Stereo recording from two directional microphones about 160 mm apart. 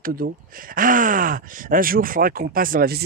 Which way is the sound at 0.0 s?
65° right (ahead or behind).